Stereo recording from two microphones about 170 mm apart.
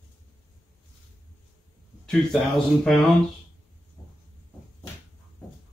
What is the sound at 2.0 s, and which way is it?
Speech, 5° left (ahead or behind).